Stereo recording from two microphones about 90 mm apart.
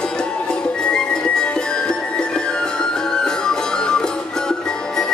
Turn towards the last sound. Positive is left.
turn(degrees=10)  # may be behind; listen again after turning